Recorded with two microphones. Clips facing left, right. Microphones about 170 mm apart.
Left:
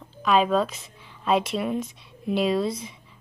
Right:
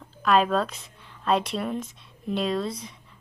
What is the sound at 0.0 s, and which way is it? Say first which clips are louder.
A woman's voice: even; centre (ahead or behind).